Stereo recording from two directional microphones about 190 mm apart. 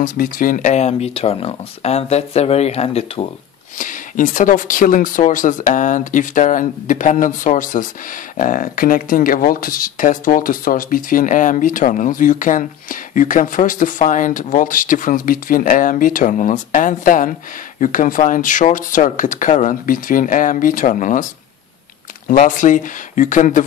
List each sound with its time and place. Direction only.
0.0 s speech: 45° left (ahead or behind)
22.3 s speech: 45° left (ahead or behind)